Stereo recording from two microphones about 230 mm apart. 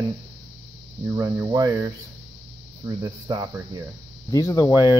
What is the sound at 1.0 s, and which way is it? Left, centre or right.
Speech, centre.